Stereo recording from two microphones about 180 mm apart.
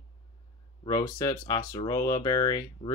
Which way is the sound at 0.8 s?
20° left (ahead or behind).